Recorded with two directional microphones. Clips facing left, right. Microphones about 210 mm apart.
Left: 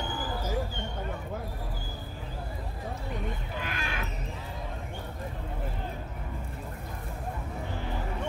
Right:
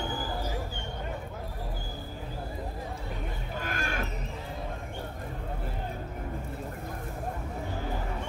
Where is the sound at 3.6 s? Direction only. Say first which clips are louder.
Right 5 dB; 45° right (ahead or behind).